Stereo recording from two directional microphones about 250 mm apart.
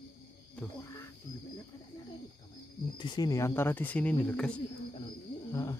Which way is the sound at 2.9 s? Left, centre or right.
Centre.